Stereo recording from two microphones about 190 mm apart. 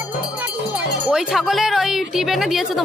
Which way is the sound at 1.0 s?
5° right (ahead or behind).